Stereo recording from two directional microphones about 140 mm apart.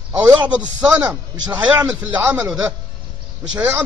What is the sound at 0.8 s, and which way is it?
A man's voice, 10° right (ahead or behind).